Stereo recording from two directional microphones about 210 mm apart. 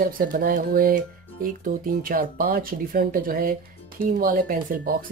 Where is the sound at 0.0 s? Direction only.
40° right (ahead or behind).